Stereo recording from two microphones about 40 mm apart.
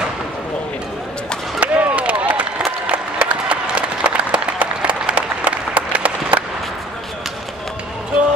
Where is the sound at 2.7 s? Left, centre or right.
Right.